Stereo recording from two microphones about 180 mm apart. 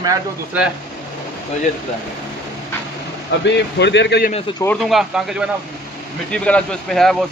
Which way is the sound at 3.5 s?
75° left (ahead or behind).